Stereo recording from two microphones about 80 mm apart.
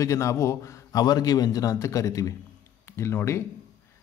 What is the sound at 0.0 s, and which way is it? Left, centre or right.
A man's voice, left.